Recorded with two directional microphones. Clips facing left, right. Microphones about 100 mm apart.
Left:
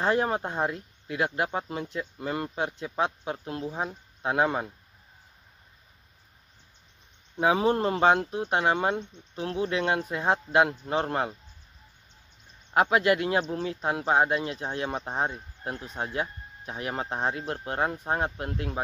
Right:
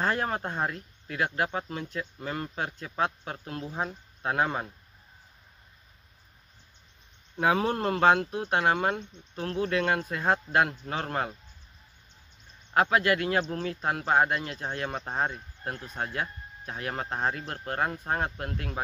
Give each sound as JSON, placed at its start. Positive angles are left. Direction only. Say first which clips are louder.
{"t": 0.0, "sound": "speech", "louder": "left 3 dB", "side_deg": 20}
{"t": 7.3, "sound": "speech", "louder": "left 2 dB", "side_deg": 20}
{"t": 12.7, "sound": "speech", "louder": "left 2 dB", "side_deg": 20}